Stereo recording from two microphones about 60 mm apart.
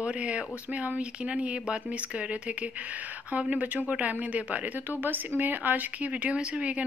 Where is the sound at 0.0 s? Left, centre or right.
Right.